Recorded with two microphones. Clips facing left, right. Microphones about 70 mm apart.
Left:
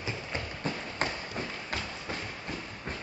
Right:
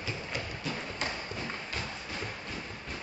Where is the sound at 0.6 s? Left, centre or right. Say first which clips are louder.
Left 6 dB; left.